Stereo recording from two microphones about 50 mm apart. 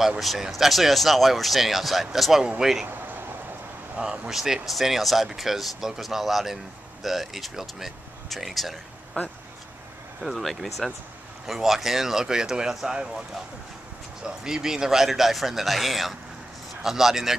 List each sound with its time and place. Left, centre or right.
0.2 s speech: centre
3.9 s speech: right; by 8.7 s centre
9.1 s speech: left
10.2 s speech: centre
14.2 s speech: centre